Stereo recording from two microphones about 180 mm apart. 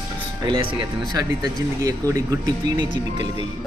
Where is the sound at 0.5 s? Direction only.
25° right (ahead or behind).